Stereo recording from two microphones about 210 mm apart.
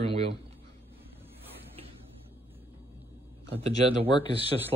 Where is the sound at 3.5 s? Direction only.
30° right (ahead or behind).